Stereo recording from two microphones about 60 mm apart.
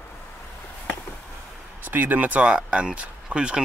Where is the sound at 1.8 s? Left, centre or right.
Right; by 3.6 s centre.